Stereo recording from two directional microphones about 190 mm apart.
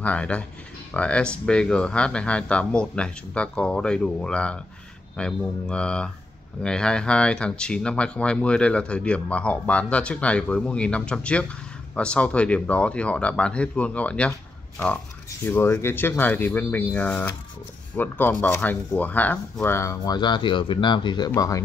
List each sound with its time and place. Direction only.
0.0 s speech: 5° left (ahead or behind)
15.4 s speech: 10° left (ahead or behind)